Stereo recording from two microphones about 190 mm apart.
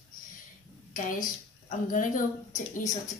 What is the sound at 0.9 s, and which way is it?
A woman's voice, 45° left (ahead or behind).